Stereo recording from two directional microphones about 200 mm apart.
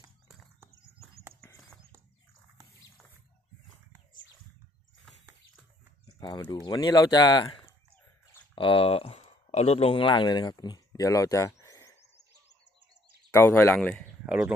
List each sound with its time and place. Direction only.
6.1 s speech: 20° left (ahead or behind)
13.3 s speech: 10° left (ahead or behind)
14.2 s speech: 5° right (ahead or behind)